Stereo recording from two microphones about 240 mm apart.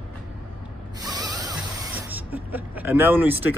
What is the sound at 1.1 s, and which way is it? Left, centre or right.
Speech, centre.